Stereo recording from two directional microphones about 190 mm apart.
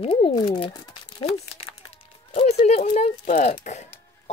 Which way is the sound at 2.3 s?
35° left (ahead or behind).